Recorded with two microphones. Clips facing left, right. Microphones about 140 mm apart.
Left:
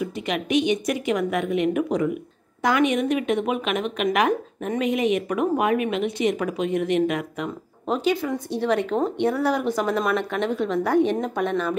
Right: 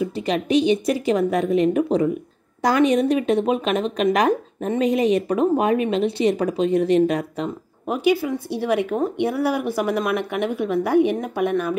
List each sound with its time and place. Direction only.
0.0 s speech: 30° right (ahead or behind)
7.8 s speech: 10° right (ahead or behind)